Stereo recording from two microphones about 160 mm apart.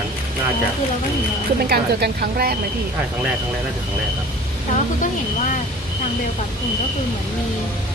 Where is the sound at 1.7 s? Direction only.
80° right.